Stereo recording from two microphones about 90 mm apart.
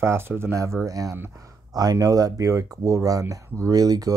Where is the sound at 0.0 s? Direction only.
30° right (ahead or behind).